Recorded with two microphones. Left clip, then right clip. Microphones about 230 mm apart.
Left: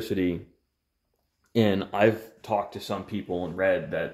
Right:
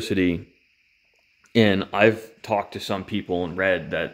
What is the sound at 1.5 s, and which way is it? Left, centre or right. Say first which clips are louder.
Speech: right 5 dB; right.